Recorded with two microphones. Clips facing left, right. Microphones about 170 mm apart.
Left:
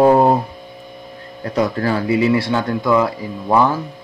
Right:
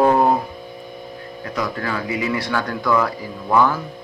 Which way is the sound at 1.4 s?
35° left (ahead or behind).